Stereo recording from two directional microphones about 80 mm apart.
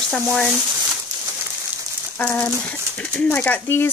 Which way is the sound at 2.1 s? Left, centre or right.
Left.